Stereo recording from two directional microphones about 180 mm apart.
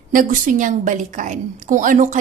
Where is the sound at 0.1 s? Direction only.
50° right (ahead or behind).